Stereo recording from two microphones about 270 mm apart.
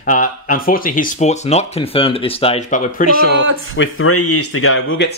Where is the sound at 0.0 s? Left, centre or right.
Left.